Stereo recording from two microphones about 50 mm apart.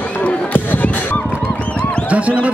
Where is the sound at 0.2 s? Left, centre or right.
Left.